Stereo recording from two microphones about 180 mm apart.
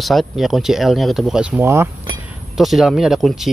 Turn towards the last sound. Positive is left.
turn(degrees=0)  # may be behind; listen again after turning